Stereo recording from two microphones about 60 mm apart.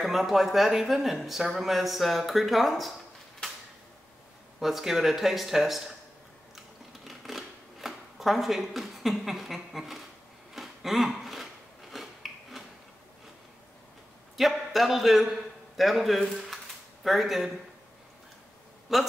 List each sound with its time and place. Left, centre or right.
0.0 s speech: centre
4.6 s speech: centre
7.1 s a sound: centre
11.9 s filing: centre
14.3 s a man's voice: centre
18.9 s speech: centre